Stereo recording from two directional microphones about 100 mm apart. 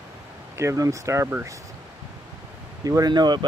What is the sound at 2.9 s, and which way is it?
Speech, 40° right (ahead or behind).